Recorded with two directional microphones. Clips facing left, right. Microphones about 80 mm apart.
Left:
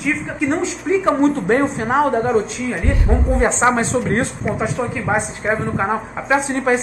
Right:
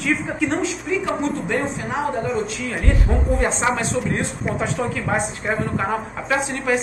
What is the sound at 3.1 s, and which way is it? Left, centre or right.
Speech, centre.